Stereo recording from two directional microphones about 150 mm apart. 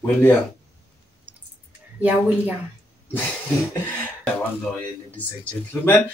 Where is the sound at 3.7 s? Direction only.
10° left (ahead or behind).